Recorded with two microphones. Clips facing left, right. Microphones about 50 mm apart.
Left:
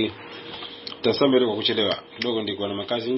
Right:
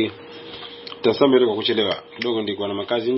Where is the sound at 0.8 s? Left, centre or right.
Centre.